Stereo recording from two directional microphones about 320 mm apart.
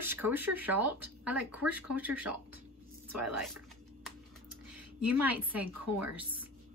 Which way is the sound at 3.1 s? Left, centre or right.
Right.